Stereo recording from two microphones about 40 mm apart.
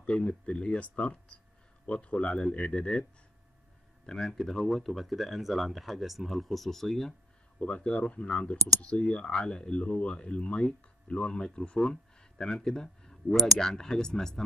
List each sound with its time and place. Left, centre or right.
0.0 s speech: left
4.0 s speech: centre
7.6 s speech: left